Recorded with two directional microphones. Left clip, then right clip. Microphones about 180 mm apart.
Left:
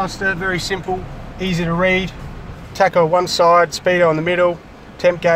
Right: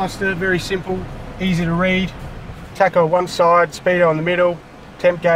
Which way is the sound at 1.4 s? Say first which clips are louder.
Left 2 dB; 40° left (ahead or behind).